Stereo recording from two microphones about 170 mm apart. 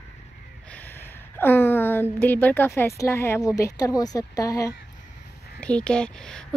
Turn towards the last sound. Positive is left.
turn(degrees=5)  # may be behind; listen again after turning